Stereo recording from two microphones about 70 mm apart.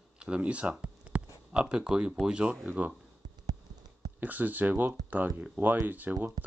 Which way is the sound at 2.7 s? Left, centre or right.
Right.